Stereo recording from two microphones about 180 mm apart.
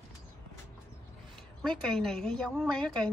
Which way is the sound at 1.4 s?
5° left (ahead or behind).